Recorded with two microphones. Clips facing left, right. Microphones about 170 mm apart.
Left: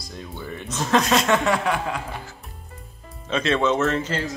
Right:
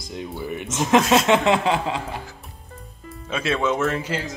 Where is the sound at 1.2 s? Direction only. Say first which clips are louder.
Right 3 dB; 20° right (ahead or behind).